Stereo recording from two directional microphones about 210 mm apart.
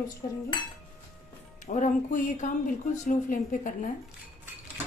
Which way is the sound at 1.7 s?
35° left (ahead or behind).